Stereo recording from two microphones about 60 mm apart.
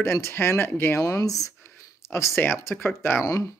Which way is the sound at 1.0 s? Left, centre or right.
Left.